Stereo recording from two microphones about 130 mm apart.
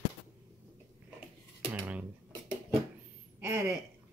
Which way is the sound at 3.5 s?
15° right (ahead or behind).